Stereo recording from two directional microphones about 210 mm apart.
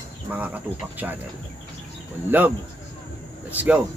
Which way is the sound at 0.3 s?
10° right (ahead or behind).